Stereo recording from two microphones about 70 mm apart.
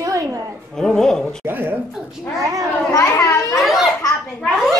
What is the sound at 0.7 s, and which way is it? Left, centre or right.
Speech, centre.